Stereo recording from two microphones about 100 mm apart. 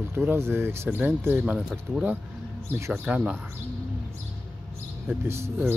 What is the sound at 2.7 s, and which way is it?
Speech, 20° right (ahead or behind).